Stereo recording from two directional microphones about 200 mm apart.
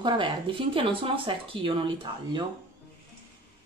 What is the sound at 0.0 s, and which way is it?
Speech, 25° right (ahead or behind).